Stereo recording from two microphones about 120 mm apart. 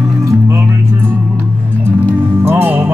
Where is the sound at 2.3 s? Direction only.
20° right (ahead or behind).